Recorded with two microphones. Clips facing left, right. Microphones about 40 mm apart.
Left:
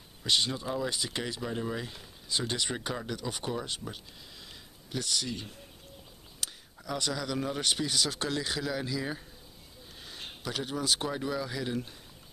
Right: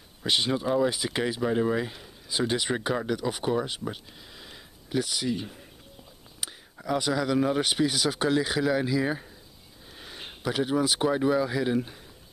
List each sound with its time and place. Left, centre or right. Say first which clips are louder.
0.2 s speech: right 4 dB; centre